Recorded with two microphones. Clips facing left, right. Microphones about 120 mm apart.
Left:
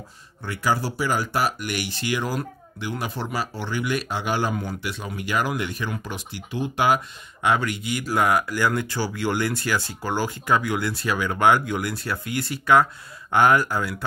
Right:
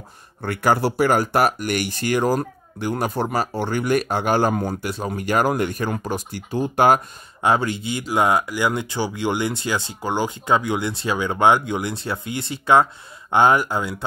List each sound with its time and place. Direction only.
0.4 s speech: 55° right (ahead or behind)
7.4 s speech: 30° right (ahead or behind)